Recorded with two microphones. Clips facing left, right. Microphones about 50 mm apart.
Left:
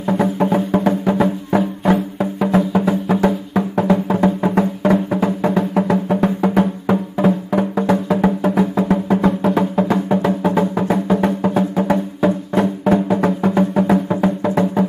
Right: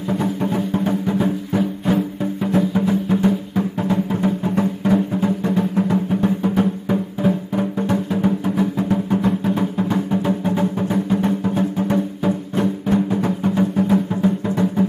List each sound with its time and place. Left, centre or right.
0.0 s music: left